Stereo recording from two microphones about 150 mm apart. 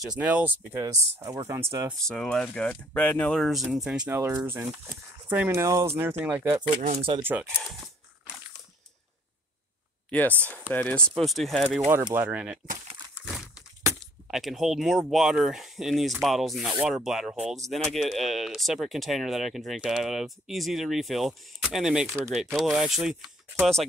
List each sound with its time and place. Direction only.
0.0 s speech: 10° right (ahead or behind)
0.8 s speech: 20° right (ahead or behind)
2.0 s speech: 5° left (ahead or behind)
4.1 s speech: 15° right (ahead or behind)
6.9 s speech: 40° right (ahead or behind)
7.2 s speech: 10° right (ahead or behind)
10.7 s speech: 10° left (ahead or behind)
11.8 s speech: 15° right (ahead or behind)
13.1 s a sound: 5° right (ahead or behind)
14.2 s speech: centre (ahead or behind)